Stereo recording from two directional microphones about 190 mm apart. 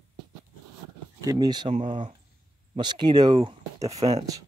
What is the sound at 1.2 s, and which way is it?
Speech, 20° right (ahead or behind).